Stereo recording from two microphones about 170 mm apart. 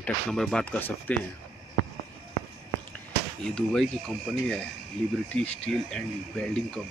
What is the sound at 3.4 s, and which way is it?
Speech, 5° left (ahead or behind).